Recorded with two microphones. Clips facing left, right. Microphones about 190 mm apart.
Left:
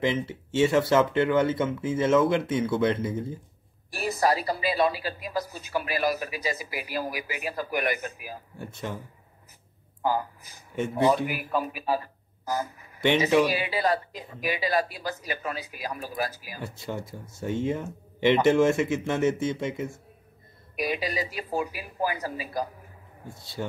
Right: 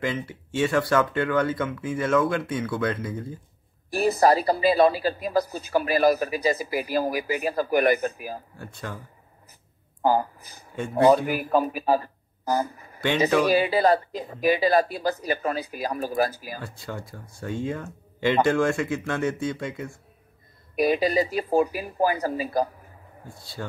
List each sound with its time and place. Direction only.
0.0 s speech: 25° left (ahead or behind)
4.0 s a woman's voice: 40° right (ahead or behind)
8.5 s speech: 20° left (ahead or behind)
11.2 s speech: 45° right (ahead or behind)
12.4 s a sound: 35° right (ahead or behind)
13.5 s a woman's voice: 45° right (ahead or behind)
16.5 s speech: 20° left (ahead or behind)
20.9 s a woman's voice: 40° right (ahead or behind)
23.2 s speech: 20° left (ahead or behind)